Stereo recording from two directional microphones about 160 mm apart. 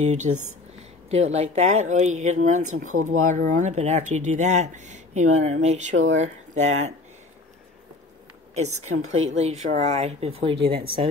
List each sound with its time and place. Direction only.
0.0 s speech: 50° right (ahead or behind)
8.5 s speech: 45° right (ahead or behind)